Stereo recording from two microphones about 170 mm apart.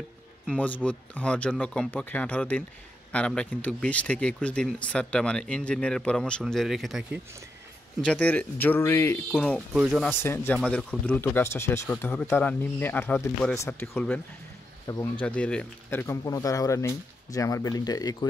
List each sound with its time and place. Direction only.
0.5 s speech: 10° left (ahead or behind)
9.8 s speech: 5° right (ahead or behind)
10.2 s speech: 10° left (ahead or behind)
14.9 s speech: 20° left (ahead or behind)
15.2 s speech: 5° left (ahead or behind); by 18.1 s 25° left (ahead or behind)